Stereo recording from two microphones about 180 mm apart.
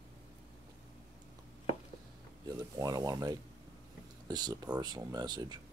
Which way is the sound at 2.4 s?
20° right (ahead or behind).